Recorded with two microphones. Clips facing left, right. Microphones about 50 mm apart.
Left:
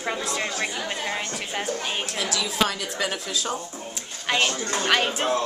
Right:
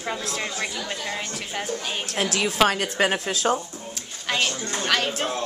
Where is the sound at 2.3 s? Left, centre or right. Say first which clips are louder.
Right 5 dB; right.